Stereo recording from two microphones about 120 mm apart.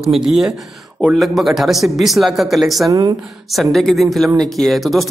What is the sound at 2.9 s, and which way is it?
Speech, 35° right (ahead or behind).